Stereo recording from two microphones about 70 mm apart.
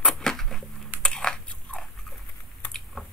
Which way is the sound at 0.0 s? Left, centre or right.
Centre.